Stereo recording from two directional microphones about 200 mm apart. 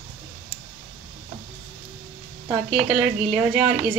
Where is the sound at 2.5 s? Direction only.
5° right (ahead or behind).